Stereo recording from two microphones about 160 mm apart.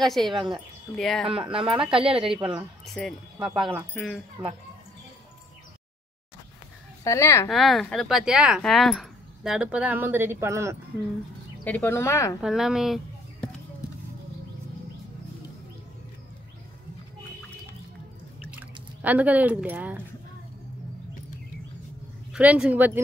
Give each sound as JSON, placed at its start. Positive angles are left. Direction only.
{"t": 0.0, "sound": "speech", "side_deg": 0}
{"t": 1.8, "sound": "speech", "side_deg": -35}
{"t": 2.9, "sound": "speech", "side_deg": 5}
{"t": 7.1, "sound": "speech", "side_deg": 15}
{"t": 7.4, "sound": "speech", "side_deg": 0}
{"t": 11.6, "sound": "speech", "side_deg": 10}
{"t": 12.4, "sound": "speech", "side_deg": -5}
{"t": 18.5, "sound": "speech", "side_deg": -10}
{"t": 22.3, "sound": "a woman's voice", "side_deg": -5}